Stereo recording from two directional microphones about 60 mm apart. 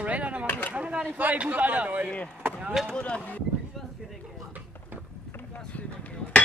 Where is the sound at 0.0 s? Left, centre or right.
Right.